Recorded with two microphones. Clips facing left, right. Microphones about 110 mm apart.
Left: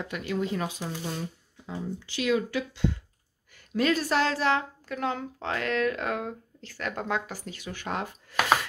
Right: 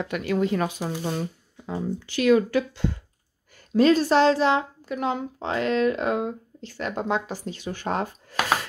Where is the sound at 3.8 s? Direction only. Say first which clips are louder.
Right 7 dB; 30° right (ahead or behind).